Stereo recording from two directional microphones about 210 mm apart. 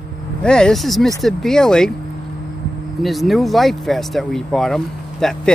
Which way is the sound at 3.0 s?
Centre (ahead or behind).